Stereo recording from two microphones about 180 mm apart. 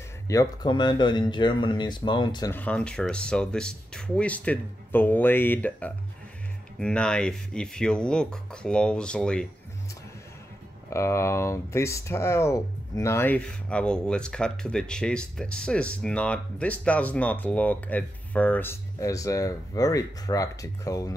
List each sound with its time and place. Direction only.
0.3 s speech: 20° left (ahead or behind)
2.5 s speech: 5° left (ahead or behind)
10.9 s speech: 15° left (ahead or behind)